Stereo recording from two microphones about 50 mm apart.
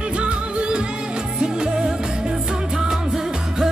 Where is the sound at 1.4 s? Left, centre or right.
Centre.